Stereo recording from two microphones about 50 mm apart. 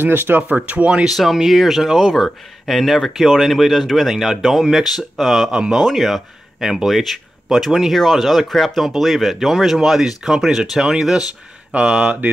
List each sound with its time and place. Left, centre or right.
0.0 s speech: right
0.7 s speech: right
1.0 s speech: centre
5.5 s speech: centre
5.8 s speech: centre
11.7 s speech: right